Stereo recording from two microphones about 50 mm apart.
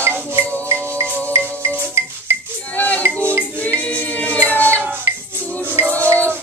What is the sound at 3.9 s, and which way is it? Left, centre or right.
Music, left.